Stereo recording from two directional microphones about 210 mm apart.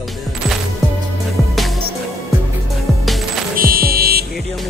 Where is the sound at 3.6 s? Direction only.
45° right (ahead or behind).